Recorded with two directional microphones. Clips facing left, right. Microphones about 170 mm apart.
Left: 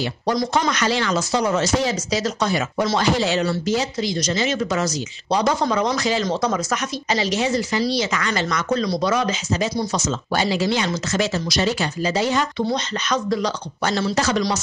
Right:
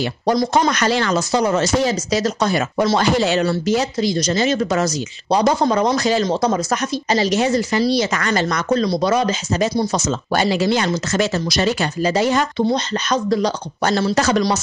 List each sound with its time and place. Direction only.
0.3 s speech: 35° right (ahead or behind)
0.7 s speech: 45° right (ahead or behind)
3.0 s speech: 55° right (ahead or behind)
4.0 s speech: 40° right (ahead or behind)
7.3 s speech: 50° right (ahead or behind)
12.7 s speech: 35° right (ahead or behind)